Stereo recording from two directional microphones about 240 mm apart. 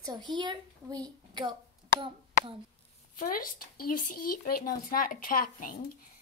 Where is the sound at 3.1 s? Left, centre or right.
Left.